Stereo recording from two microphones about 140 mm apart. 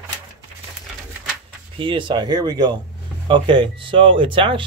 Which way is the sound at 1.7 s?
40° right (ahead or behind).